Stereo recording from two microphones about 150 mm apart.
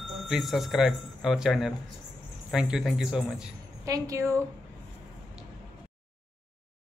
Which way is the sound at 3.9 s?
20° right (ahead or behind).